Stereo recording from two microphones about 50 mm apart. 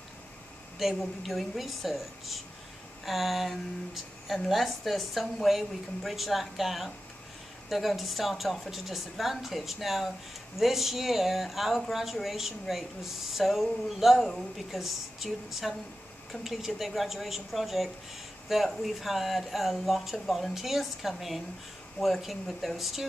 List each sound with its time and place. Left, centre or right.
0.7 s a woman's voice: centre